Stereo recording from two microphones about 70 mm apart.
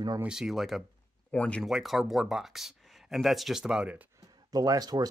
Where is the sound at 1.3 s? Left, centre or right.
Centre.